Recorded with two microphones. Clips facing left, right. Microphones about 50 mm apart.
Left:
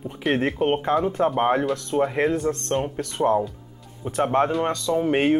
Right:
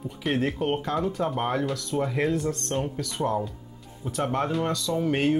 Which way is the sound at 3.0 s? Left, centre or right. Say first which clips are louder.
Left 6 dB; left.